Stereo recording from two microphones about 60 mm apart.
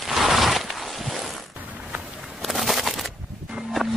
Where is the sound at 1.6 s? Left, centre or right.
Right.